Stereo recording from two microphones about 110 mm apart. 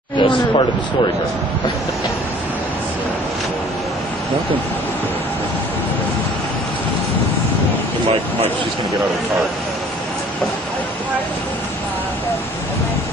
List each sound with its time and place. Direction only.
0.2 s a man's voice: 50° left (ahead or behind)